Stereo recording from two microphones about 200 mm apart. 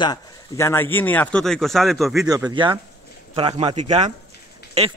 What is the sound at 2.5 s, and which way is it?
Speech, 25° right (ahead or behind).